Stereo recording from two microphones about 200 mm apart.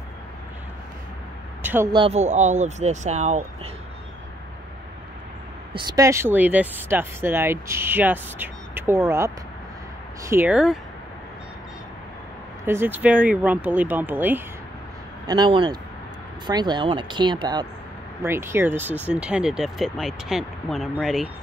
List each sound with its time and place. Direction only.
1.6 s speech: 10° right (ahead or behind)
1.9 s speech: 25° right (ahead or behind)
5.7 s speech: 20° right (ahead or behind); by 10.8 s 5° right (ahead or behind)
12.6 s speech: 10° right (ahead or behind)
15.2 s speech: 20° right (ahead or behind); by 21.3 s centre (ahead or behind)